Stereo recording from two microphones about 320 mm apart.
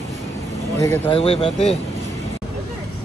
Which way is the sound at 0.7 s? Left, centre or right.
Centre.